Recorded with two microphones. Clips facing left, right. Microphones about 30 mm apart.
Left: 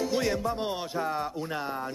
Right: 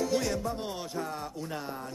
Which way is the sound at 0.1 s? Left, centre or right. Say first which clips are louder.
Left 2 dB; left.